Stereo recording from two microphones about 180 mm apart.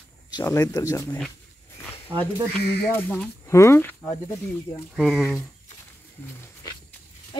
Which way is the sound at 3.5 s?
15° left (ahead or behind).